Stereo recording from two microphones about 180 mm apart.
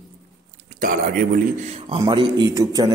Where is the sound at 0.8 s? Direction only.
50° right (ahead or behind).